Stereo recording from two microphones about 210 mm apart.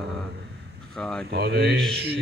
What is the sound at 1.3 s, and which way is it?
Speech, 50° right (ahead or behind).